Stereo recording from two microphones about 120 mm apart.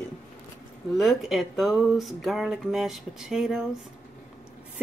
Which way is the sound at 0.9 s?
Centre (ahead or behind).